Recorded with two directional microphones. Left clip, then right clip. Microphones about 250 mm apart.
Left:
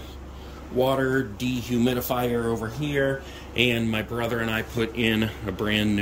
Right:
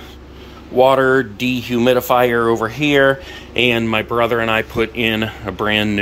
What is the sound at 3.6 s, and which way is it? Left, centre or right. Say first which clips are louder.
Speech: right 8 dB; centre.